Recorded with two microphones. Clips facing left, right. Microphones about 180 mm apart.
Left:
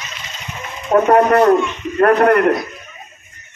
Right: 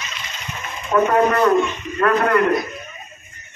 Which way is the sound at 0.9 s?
60° left (ahead or behind).